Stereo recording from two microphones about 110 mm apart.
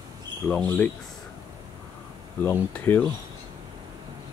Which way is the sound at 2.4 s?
15° left (ahead or behind).